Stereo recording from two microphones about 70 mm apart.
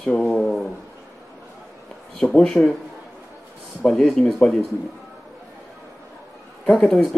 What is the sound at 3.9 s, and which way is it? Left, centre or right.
Speech, centre.